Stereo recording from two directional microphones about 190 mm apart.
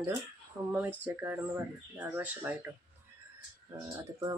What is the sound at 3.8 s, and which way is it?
Speech, 20° right (ahead or behind).